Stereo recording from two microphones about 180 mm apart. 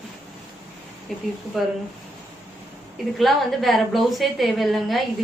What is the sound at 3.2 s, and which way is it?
A woman's voice, centre (ahead or behind).